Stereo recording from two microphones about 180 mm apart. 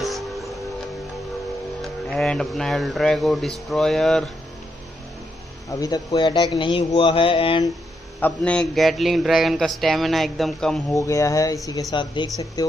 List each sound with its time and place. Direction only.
0.0 s music: centre (ahead or behind)
1.8 s a man's voice: centre (ahead or behind)
5.7 s speech: 20° left (ahead or behind)
8.2 s a man's voice: 5° left (ahead or behind)
10.9 s speech: 15° left (ahead or behind)